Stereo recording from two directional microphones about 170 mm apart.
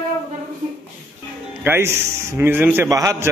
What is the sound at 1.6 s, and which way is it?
A man's voice, 15° right (ahead or behind).